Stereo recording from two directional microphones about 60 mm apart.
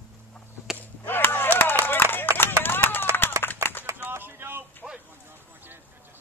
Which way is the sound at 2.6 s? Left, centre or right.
Left.